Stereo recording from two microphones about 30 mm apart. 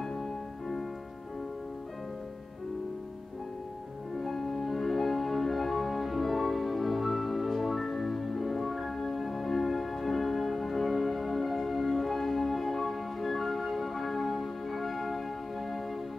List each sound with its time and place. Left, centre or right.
0.0 s music: centre
4.2 s music: centre